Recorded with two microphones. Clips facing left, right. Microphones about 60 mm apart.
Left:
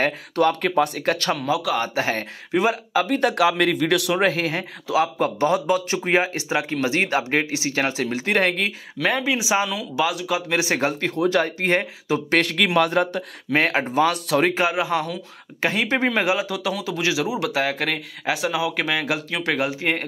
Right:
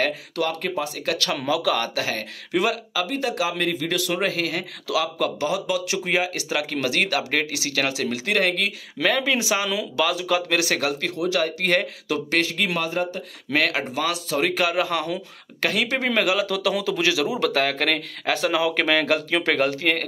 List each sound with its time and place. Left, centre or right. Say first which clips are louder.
0.4 s speech: left 7 dB; left
1.6 s speech: even; centre
2.0 s speech: left 3 dB; left
2.9 s speech: left 5 dB; left
9.0 s speech: even; centre
10.6 s speech: left 2 dB; left
11.6 s speech: left 1 dB; left
12.3 s speech: left 4 dB; left
12.7 s speech: left 6 dB; left
13.5 s speech: left 2 dB; left
14.1 s speech: left 4 dB; left
14.5 s speech: left 1 dB; left
15.6 s speech: left 2 dB; left